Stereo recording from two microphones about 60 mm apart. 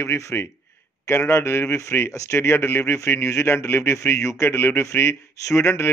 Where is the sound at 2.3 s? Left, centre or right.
Left.